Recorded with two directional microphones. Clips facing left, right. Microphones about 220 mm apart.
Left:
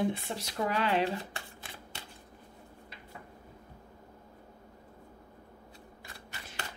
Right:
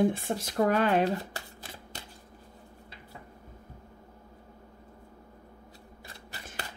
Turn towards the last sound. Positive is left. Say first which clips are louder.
# right 2 dB
turn(degrees=-35)  # may be behind; listen again after turning